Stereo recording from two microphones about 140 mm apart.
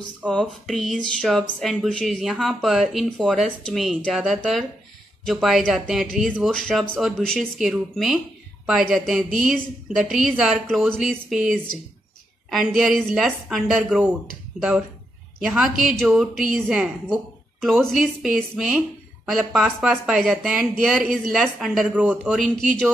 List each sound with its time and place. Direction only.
0.3 s speech: 5° left (ahead or behind)
15.4 s speech: 5° right (ahead or behind)